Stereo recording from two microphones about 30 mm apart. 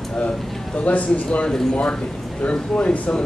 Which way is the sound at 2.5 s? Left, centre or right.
Left.